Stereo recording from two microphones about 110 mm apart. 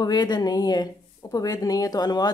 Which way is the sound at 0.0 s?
40° left (ahead or behind).